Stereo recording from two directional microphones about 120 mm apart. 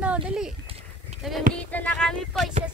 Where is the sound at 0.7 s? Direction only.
55° right (ahead or behind).